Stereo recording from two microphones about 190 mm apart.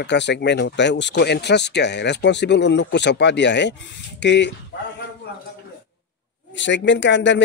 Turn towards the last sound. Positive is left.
turn(degrees=70)  # may be behind; listen again after turning